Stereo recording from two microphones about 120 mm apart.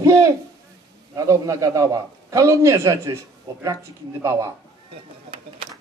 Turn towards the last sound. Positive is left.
turn(degrees=-25)  # may be behind; listen again after turning